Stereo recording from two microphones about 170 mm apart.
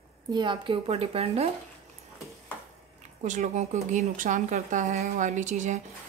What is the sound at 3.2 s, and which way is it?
Speech, 45° right (ahead or behind).